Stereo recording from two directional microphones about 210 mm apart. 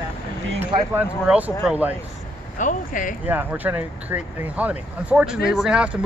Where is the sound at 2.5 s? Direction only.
40° left (ahead or behind).